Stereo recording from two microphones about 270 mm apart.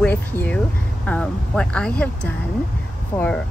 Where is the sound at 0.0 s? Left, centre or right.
Centre.